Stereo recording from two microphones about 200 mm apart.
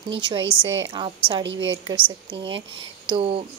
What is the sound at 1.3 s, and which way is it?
A woman's voice, 25° right (ahead or behind).